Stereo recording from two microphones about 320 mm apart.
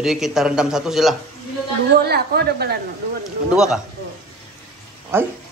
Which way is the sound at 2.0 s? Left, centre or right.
Right.